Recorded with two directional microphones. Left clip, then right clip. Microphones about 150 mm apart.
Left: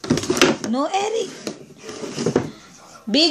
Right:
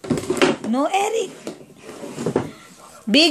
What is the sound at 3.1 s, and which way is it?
Speech, 40° right (ahead or behind).